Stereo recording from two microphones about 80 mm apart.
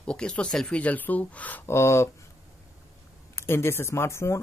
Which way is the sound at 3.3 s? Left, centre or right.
Left.